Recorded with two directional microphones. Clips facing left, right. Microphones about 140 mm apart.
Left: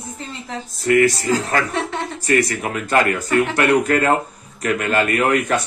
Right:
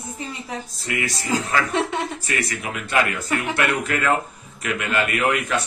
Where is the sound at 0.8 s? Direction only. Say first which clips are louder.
Left 14 dB; 45° left (ahead or behind).